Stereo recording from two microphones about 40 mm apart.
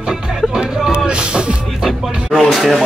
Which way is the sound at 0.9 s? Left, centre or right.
Right.